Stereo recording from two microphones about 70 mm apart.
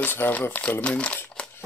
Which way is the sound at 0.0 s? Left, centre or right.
Left.